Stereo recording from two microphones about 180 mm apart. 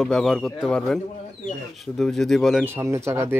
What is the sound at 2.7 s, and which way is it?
Speech, 15° right (ahead or behind).